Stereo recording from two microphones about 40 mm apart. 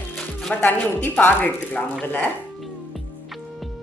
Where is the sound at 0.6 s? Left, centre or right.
Left.